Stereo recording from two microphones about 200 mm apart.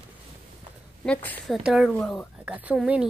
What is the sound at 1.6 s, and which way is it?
Speech, 5° right (ahead or behind).